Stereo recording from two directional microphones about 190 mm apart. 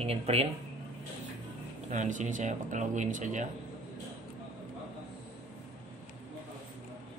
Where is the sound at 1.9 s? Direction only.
40° right (ahead or behind).